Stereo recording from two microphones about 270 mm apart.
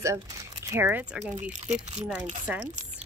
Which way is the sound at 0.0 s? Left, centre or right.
Centre.